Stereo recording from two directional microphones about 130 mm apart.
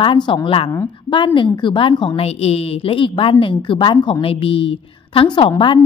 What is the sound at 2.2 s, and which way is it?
A woman's voice, 50° left (ahead or behind).